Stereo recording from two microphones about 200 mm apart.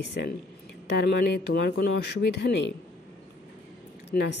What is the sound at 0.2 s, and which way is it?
Speech, 55° left (ahead or behind).